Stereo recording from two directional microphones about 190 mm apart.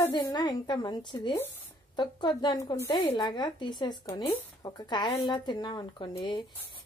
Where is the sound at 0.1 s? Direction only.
20° left (ahead or behind).